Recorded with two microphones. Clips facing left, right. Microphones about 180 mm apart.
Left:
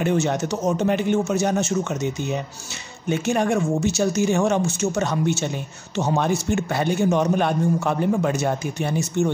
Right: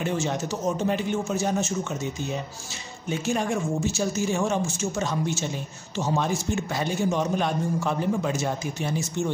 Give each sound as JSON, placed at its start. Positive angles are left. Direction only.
{"t": 0.0, "sound": "a man's voice", "side_deg": 65}